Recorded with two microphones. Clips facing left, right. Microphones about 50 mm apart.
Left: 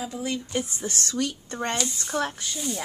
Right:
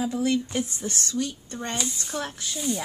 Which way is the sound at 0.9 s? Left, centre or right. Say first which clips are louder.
Left 1 dB; left.